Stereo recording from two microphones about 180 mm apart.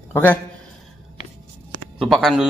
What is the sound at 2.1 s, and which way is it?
Speech, centre (ahead or behind).